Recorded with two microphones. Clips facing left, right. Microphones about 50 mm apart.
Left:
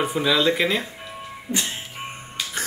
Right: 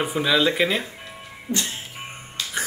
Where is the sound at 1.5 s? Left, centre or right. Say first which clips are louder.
Even; right.